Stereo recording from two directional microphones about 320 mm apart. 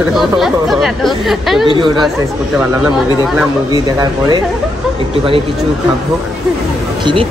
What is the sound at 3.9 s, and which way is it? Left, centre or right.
Speech, centre.